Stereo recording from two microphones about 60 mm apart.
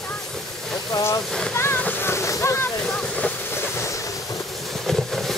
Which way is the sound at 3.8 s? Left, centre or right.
Left.